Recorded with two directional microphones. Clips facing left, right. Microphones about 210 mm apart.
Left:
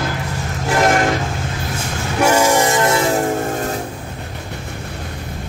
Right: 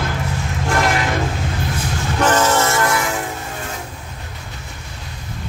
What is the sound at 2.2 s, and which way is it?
Train horn, 10° left (ahead or behind).